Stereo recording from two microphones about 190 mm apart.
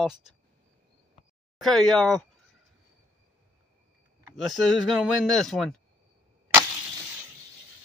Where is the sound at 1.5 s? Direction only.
Centre (ahead or behind).